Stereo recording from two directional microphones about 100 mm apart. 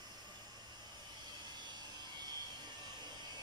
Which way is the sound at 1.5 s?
45° right (ahead or behind).